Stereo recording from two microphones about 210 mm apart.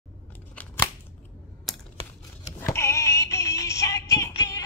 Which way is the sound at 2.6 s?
10° left (ahead or behind).